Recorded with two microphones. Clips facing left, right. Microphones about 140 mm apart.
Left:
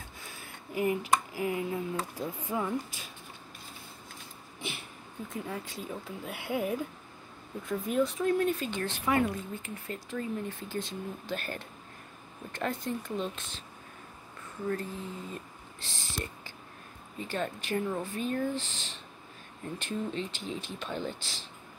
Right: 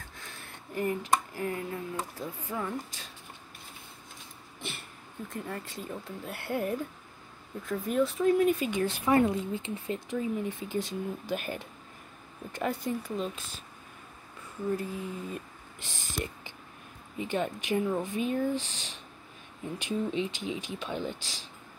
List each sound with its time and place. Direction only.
0.2 s a sound: 5° left (ahead or behind)
2.1 s speech: 10° left (ahead or behind)
4.6 s a sound: centre (ahead or behind)
5.3 s speech: centre (ahead or behind)
9.1 s speech: 25° right (ahead or behind); by 13.5 s 5° right (ahead or behind)
14.7 s speech: 15° right (ahead or behind)
17.2 s speech: 15° right (ahead or behind)